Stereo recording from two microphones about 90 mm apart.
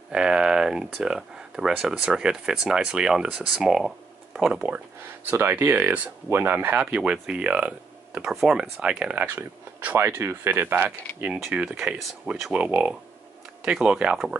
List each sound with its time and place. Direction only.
0.1 s speech: 10° right (ahead or behind)
5.3 s speech: 25° right (ahead or behind)
11.3 s speech: centre (ahead or behind)
11.7 s speech: 15° right (ahead or behind)